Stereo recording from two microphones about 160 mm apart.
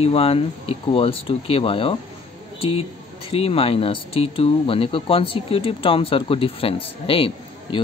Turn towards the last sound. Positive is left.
turn(degrees=35)  # may be behind; listen again after turning